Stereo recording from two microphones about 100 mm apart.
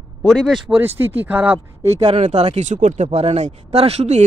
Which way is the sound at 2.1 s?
90° right.